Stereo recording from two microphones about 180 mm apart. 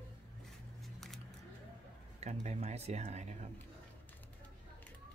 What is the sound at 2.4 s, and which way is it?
Speech, 35° right (ahead or behind).